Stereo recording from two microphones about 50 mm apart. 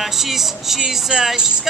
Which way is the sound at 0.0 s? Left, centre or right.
Centre.